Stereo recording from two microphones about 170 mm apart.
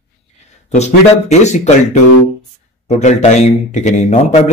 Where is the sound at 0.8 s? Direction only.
40° left (ahead or behind).